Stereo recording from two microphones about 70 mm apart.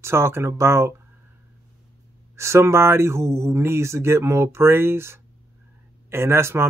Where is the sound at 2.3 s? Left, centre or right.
Right.